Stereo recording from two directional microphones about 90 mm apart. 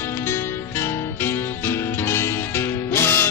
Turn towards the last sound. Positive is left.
turn(degrees=25)  # may be behind; listen again after turning